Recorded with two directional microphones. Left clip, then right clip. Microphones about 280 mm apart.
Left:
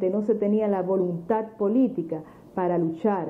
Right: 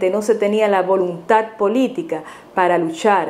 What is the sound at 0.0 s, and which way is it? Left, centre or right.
A woman's voice, centre.